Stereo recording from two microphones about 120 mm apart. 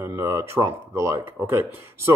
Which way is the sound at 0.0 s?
25° right (ahead or behind).